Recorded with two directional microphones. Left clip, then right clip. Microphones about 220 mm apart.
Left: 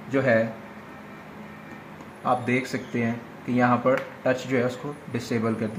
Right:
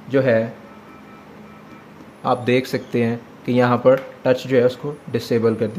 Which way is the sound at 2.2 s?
45° right (ahead or behind).